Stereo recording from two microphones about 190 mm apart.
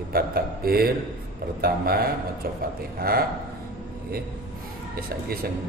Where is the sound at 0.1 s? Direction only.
55° right (ahead or behind).